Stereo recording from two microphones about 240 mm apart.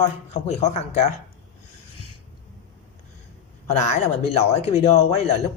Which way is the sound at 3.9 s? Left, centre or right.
Left.